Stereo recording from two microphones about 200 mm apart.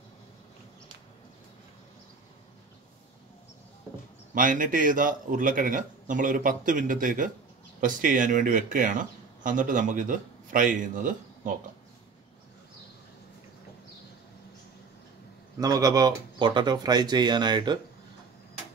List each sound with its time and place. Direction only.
4.3 s speech: 40° right (ahead or behind)
15.6 s speech: 15° right (ahead or behind)